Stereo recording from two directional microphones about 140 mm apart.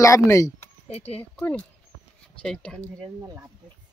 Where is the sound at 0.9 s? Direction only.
45° left (ahead or behind).